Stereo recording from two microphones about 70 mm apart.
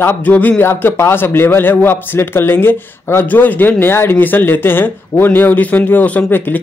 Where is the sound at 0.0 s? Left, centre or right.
Left.